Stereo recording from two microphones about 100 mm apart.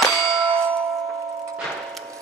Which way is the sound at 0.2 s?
65° right (ahead or behind).